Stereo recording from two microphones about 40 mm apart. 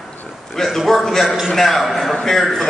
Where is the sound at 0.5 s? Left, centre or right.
Centre.